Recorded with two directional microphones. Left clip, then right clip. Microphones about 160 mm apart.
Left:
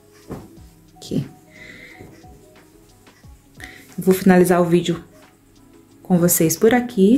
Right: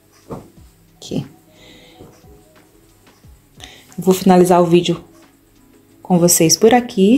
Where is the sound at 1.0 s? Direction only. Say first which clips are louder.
Right 1 dB; centre (ahead or behind).